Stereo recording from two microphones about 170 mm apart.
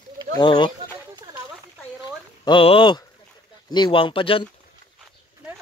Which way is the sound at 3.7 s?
25° left (ahead or behind).